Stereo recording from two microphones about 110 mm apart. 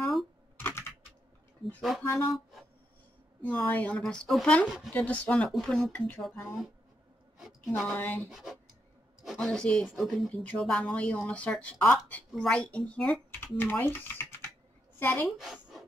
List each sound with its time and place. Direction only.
0.0 s typing: centre (ahead or behind)
0.6 s typing: 20° left (ahead or behind)
1.8 s speech: centre (ahead or behind)
3.4 s a woman's voice: 15° left (ahead or behind); by 4.9 s 5° right (ahead or behind)
4.9 s a woman's voice: 15° left (ahead or behind)
5.5 s a woman's voice: centre (ahead or behind); by 6.2 s 15° left (ahead or behind)
7.3 s a sound: 5° right (ahead or behind)
7.9 s a woman's voice: 15° left (ahead or behind)
8.3 s a woman's voice: 5° right (ahead or behind); by 15.2 s 20° left (ahead or behind)
15.2 s a woman's voice: 5° right (ahead or behind)